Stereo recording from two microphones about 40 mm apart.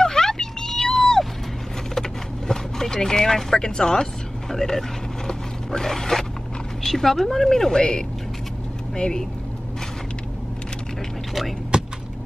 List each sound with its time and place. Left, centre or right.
0.0 s vehicle: centre
2.0 s a sound: centre
6.8 s speech: centre
11.7 s vehicle: right